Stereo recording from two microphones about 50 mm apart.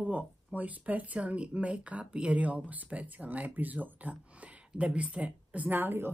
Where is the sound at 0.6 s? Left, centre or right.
Right.